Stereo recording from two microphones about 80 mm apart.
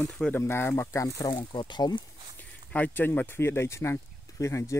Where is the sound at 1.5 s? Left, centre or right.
Left.